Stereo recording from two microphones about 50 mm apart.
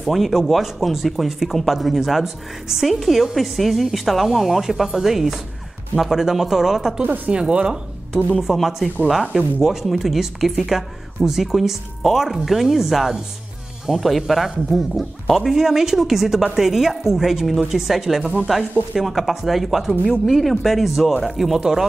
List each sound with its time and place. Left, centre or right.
0.0 s speech: centre
7.0 s speech: right
7.3 s speech: centre
8.4 s speech: centre